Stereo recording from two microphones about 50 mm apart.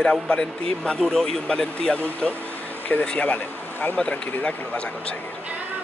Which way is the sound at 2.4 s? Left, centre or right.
Left.